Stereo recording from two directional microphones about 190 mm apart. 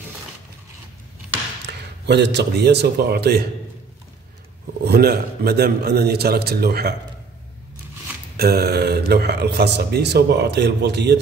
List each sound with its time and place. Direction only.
2.0 s speech: 65° right (ahead or behind)
4.8 s speech: 55° right (ahead or behind)
8.4 s speech: 55° right (ahead or behind)